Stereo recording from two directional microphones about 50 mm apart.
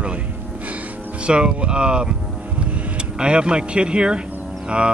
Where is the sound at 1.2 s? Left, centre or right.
Right.